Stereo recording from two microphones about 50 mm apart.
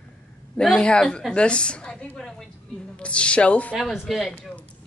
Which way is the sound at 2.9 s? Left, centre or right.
Left.